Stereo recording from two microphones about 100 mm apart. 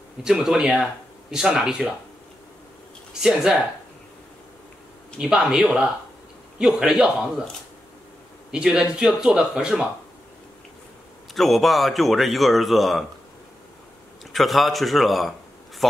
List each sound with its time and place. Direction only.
0.2 s speech: 5° right (ahead or behind)
3.1 s speech: 5° right (ahead or behind)
5.2 s speech: 10° right (ahead or behind)
8.5 s speech: 5° right (ahead or behind)
11.3 s speech: centre (ahead or behind)
14.3 s speech: centre (ahead or behind)